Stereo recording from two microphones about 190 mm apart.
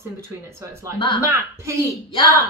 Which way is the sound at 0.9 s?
25° left (ahead or behind).